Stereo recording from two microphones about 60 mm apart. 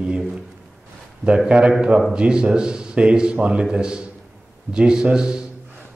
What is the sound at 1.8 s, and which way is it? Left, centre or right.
Speech, centre.